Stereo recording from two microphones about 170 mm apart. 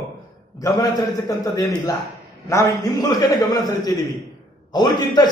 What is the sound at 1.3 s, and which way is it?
A man's voice, 20° left (ahead or behind).